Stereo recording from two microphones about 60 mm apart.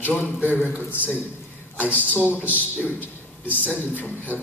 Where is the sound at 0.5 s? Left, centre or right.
Left.